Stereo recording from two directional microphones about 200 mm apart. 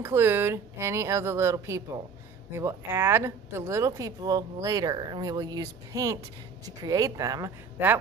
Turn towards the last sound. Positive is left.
turn(degrees=-10)  # may be behind; listen again after turning